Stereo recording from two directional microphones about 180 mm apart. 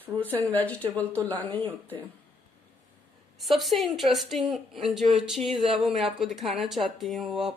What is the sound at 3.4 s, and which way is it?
Speech, centre (ahead or behind).